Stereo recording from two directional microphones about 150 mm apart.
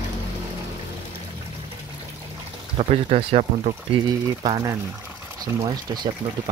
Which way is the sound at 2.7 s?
45° right (ahead or behind).